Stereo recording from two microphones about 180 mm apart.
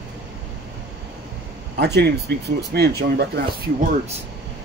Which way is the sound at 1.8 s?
70° right (ahead or behind).